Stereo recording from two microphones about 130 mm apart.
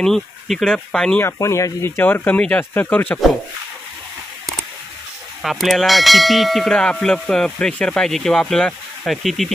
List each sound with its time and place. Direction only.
0.0 s speech: centre (ahead or behind)
1.2 s speech: 25° left (ahead or behind)
5.4 s speech: centre (ahead or behind)